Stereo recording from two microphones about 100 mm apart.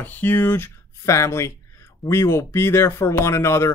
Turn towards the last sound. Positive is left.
turn(degrees=25)  # may be behind; listen again after turning